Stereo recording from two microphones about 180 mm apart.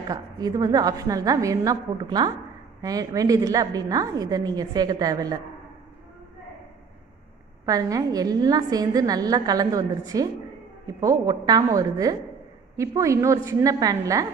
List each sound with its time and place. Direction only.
0.1 s a woman's voice: 20° right (ahead or behind)
7.6 s a woman's voice: 20° right (ahead or behind)